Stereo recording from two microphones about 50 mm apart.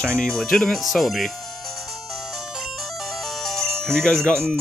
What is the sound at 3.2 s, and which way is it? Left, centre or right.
Music, centre.